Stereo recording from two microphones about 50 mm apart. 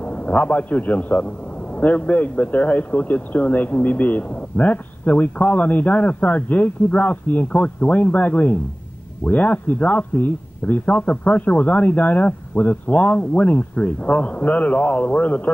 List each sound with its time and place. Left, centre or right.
0.0 s a man's voice: left